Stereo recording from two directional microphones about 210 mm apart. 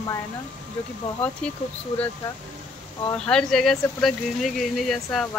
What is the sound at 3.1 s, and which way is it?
Speech, 5° left (ahead or behind).